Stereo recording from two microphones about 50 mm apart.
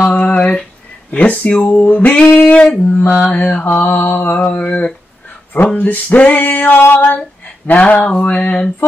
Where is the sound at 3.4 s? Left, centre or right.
Left.